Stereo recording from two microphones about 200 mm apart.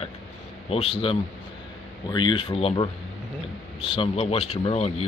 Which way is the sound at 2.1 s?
25° left (ahead or behind).